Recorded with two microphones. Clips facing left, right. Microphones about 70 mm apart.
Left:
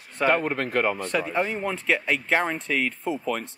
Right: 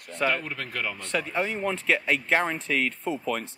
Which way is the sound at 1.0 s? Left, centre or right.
Centre.